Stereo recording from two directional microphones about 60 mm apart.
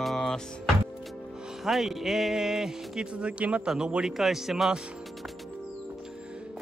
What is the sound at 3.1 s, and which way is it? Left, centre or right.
A man's voice, centre.